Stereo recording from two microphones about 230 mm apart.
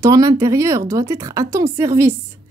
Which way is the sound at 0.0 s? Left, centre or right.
Centre.